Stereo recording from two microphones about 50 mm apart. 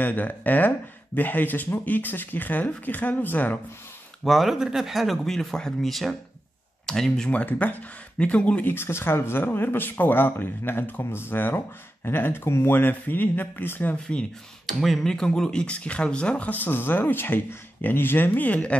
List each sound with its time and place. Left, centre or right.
0.0 s speech: left
4.2 s speech: centre
5.2 s speech: centre
7.4 s speech: left
8.6 s speech: left
12.7 s speech: left
14.7 s speech: centre
15.0 s speech: centre; by 18.8 s left